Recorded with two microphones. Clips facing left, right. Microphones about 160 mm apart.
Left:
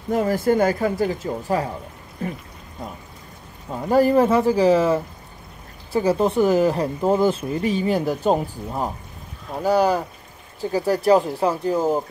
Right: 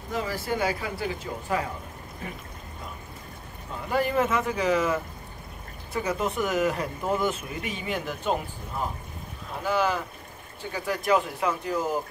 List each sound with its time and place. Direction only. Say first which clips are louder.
0.1 s speech: left 10 dB; 50° left (ahead or behind)
3.9 s speech: left 9 dB; 35° left (ahead or behind)